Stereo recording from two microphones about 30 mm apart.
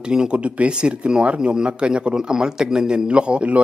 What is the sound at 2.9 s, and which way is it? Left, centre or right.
Speech, right.